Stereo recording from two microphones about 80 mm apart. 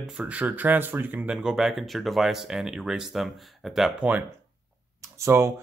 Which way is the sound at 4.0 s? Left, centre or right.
Right.